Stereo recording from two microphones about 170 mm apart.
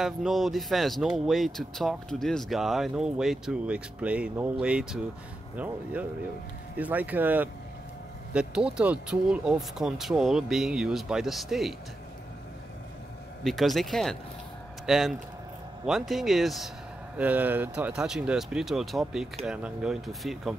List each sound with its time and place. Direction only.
0.0 s speech: centre (ahead or behind)
6.8 s speech: 10° right (ahead or behind)
13.4 s speech: centre (ahead or behind)